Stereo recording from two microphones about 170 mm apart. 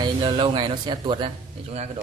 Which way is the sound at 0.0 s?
25° right (ahead or behind).